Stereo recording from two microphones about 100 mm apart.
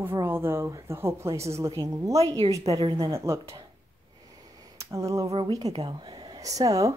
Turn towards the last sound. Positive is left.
turn(degrees=-35)  # may be behind; listen again after turning